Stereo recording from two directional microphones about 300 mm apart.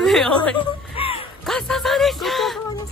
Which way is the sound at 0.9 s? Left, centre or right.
Centre.